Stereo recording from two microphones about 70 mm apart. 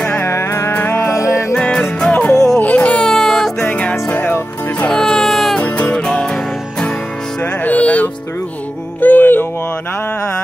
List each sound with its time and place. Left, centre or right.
0.1 s music: left
1.0 s music: left
1.5 s music: centre
3.1 s music: centre
3.6 s music: centre
4.8 s music: centre
5.6 s music: left
9.0 s a sound: left